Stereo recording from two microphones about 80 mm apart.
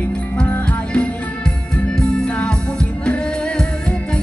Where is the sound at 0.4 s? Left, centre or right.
Centre.